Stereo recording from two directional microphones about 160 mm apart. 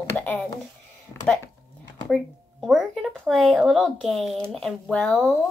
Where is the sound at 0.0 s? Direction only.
10° left (ahead or behind).